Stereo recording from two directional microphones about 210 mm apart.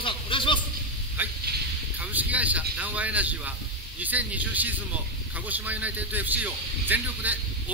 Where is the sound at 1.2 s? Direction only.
10° right (ahead or behind).